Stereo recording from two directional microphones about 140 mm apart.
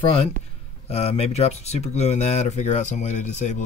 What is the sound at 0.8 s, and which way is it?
Speech, 50° left (ahead or behind).